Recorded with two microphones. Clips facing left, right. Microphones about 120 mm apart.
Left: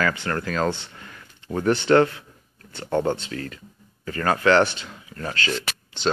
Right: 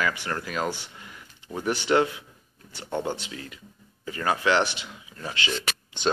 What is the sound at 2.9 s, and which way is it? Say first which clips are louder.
Speech: left 6 dB; 50° left (ahead or behind).